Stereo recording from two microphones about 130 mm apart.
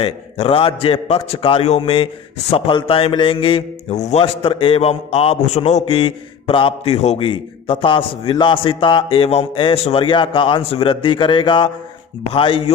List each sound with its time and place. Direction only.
0.0 s a man's voice: 45° left (ahead or behind)
3.9 s a man's voice: 60° left (ahead or behind)
5.9 s a man's voice: 45° left (ahead or behind)